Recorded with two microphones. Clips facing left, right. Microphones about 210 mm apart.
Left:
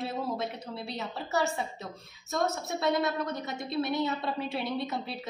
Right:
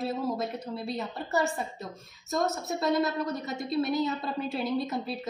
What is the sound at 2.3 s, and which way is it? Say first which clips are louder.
A woman's voice: right 1 dB; centre (ahead or behind).